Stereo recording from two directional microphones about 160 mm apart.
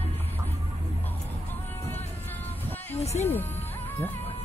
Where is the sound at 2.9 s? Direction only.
40° left (ahead or behind).